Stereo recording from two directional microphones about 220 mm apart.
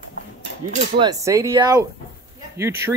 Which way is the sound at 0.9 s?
15° right (ahead or behind).